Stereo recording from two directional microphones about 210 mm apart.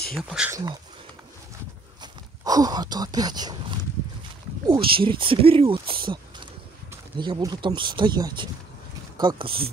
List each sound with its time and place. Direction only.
0.1 s speech: centre (ahead or behind)
2.0 s speech: 20° right (ahead or behind)
4.6 s speech: 25° right (ahead or behind)
7.2 s speech: 20° right (ahead or behind)